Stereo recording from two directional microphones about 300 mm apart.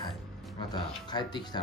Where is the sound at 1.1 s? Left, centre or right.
Centre.